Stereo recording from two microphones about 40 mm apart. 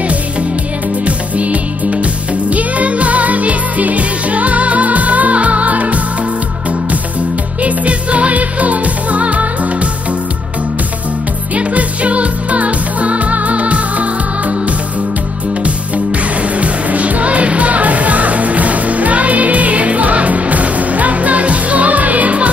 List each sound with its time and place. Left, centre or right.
1.0 s music: right
7.6 s music: right
11.5 s music: right
16.5 s music: right